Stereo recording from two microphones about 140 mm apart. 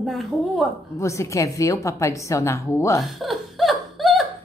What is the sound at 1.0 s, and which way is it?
A woman's voice, 20° left (ahead or behind).